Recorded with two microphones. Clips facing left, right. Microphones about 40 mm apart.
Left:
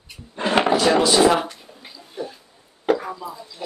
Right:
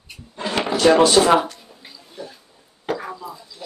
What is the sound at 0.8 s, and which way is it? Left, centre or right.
Speech, right.